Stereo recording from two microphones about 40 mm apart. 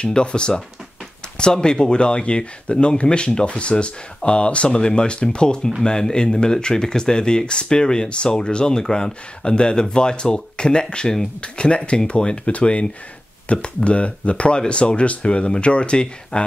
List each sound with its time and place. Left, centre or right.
0.0 s speech: left